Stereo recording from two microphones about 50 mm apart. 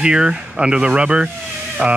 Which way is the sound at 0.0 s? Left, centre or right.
Centre.